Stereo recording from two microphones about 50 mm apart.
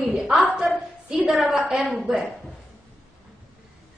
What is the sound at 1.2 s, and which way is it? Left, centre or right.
Child singing, centre.